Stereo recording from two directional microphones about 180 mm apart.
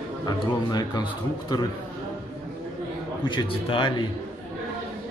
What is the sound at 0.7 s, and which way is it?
Speech, 25° left (ahead or behind).